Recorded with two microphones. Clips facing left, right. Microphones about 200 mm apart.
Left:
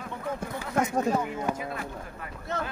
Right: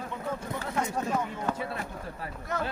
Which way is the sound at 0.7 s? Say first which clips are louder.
Left 5 dB; 40° left (ahead or behind).